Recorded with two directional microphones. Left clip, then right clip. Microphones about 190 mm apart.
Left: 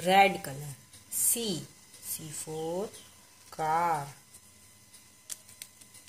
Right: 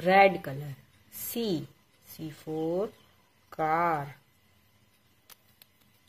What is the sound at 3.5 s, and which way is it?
Speech, 25° right (ahead or behind).